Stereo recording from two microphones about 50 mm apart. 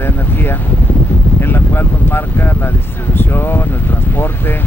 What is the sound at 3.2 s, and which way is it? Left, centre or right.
Speech, left.